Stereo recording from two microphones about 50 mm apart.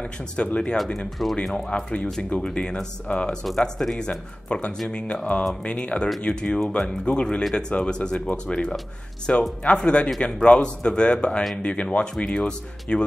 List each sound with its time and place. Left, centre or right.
0.4 s speech: centre